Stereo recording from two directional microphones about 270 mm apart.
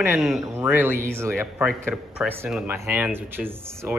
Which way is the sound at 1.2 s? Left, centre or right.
Centre.